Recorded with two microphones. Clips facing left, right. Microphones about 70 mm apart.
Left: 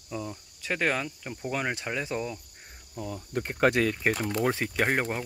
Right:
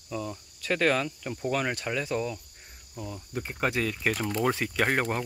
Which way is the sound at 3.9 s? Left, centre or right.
Left.